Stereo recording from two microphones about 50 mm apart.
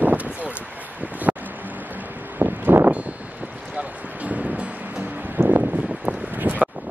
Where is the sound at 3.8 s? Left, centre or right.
Right.